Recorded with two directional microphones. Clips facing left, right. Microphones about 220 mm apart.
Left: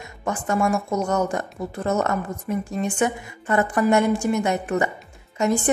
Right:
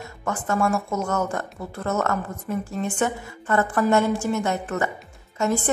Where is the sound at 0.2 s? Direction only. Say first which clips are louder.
Left 1 dB; 15° left (ahead or behind).